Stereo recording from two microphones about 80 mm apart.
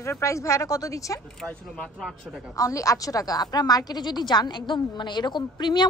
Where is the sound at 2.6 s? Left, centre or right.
Left.